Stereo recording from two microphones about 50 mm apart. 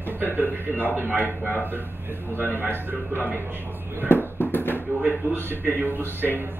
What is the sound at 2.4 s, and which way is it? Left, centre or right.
Speech, right.